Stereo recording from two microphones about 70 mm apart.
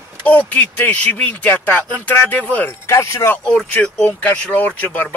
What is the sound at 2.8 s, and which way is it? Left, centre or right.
Speech, left.